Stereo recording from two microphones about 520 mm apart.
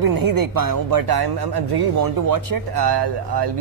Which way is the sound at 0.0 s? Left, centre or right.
Right.